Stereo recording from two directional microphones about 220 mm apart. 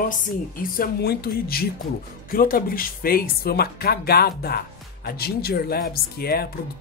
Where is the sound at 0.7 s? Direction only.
45° left (ahead or behind).